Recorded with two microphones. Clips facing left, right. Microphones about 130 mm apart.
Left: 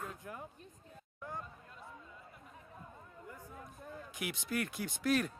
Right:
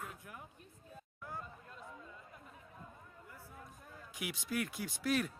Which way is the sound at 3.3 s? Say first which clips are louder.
Left 5 dB; 15° left (ahead or behind).